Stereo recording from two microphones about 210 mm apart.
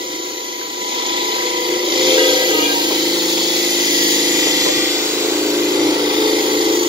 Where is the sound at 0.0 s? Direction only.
25° right (ahead or behind).